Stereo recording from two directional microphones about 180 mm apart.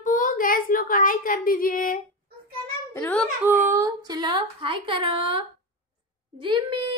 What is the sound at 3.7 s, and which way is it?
Speech, 20° right (ahead or behind).